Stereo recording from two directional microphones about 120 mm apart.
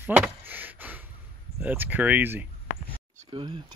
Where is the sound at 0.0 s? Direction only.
15° right (ahead or behind).